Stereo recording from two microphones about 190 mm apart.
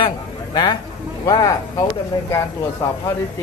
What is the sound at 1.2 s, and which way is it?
Speech, 20° left (ahead or behind).